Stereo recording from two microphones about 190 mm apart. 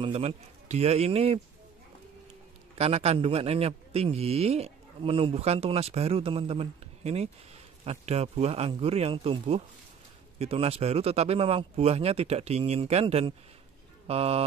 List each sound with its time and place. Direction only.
0.0 s a man's voice: 30° right (ahead or behind)
2.8 s a man's voice: 30° right (ahead or behind)